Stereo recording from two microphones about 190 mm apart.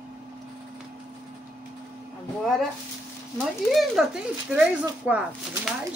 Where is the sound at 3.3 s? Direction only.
Centre (ahead or behind).